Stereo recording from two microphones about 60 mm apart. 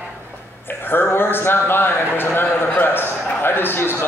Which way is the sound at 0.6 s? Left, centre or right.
Left.